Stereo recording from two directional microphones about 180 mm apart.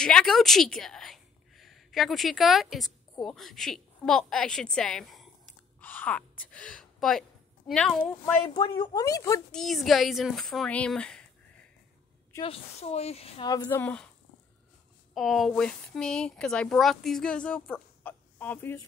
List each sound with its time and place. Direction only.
0.0 s a woman's voice: 5° left (ahead or behind)
5.8 s a sound: 10° left (ahead or behind)
8.5 s speech: 25° left (ahead or behind)
9.5 s speech: centre (ahead or behind)
12.4 s speech: 35° left (ahead or behind)
13.5 s speech: 15° left (ahead or behind)
15.1 s speech: centre (ahead or behind)